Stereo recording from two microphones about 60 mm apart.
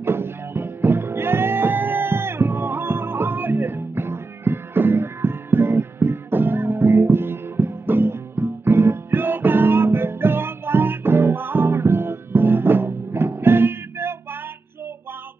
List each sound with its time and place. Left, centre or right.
0.0 s music: right